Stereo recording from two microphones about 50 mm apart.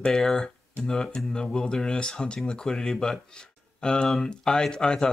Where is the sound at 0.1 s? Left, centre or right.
Centre.